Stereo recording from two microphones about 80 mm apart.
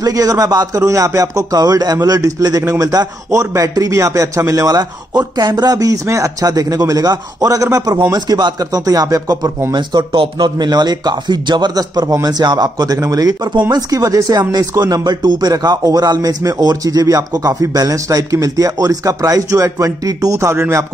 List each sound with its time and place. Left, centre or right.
0.0 s speech: right
6.4 s speech: right
9.8 s speech: right
11.7 s speech: right